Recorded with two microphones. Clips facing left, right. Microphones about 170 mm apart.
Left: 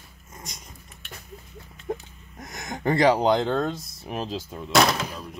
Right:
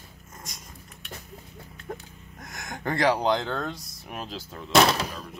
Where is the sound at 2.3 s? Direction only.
20° left (ahead or behind).